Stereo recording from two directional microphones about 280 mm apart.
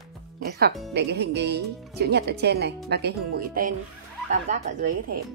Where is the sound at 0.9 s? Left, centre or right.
Right.